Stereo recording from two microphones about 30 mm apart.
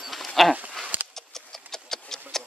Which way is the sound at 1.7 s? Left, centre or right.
Centre.